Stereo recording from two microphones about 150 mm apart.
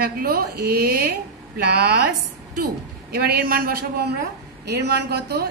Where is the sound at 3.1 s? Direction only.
90° right.